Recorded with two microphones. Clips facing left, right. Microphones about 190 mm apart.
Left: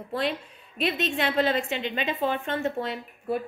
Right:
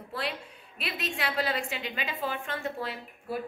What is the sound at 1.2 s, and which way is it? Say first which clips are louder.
A woman's voice: left 6 dB; 25° left (ahead or behind).